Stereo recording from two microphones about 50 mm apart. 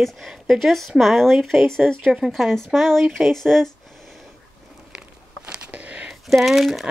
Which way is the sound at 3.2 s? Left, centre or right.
Centre.